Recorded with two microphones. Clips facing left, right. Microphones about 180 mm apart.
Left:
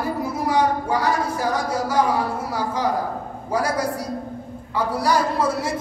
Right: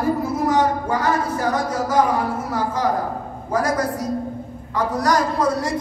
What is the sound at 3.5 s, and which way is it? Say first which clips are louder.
A man's voice: right 2 dB; 10° left (ahead or behind).